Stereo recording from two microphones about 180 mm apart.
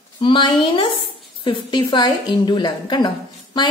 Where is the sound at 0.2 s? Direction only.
25° left (ahead or behind).